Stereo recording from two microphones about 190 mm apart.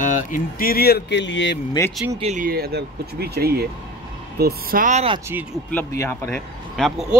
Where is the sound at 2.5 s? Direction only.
55° right (ahead or behind).